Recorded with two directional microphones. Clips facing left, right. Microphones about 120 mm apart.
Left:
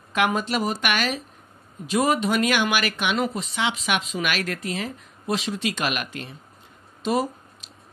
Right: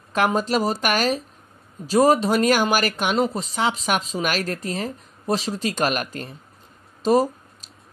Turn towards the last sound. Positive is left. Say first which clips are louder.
# right 4 dB
turn(degrees=-40)  # may be behind; listen again after turning